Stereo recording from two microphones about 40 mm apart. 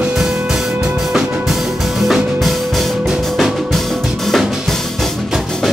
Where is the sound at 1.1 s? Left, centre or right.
Centre.